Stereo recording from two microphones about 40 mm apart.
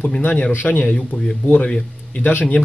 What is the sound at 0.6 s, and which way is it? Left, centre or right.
Speech, left.